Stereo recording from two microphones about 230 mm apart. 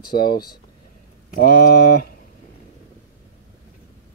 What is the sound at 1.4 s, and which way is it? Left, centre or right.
Speech, left.